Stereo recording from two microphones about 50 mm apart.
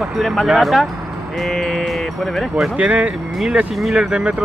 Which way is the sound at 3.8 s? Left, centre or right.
Centre.